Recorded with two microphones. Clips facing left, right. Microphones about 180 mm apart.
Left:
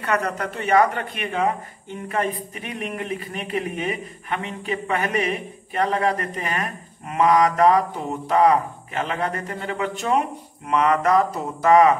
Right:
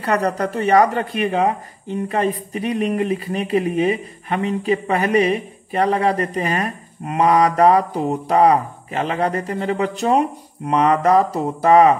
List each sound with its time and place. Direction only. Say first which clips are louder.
0.0 s speech: right 5 dB; 35° right (ahead or behind)